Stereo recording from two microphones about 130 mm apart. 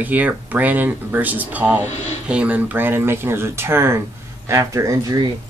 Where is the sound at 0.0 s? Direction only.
15° right (ahead or behind).